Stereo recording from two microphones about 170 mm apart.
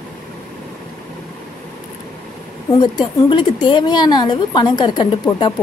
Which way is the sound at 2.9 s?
30° left (ahead or behind).